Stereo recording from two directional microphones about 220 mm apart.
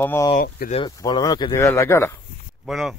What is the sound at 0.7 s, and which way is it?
Speech, 20° left (ahead or behind).